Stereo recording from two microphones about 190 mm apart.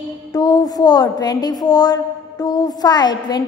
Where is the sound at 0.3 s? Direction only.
20° left (ahead or behind).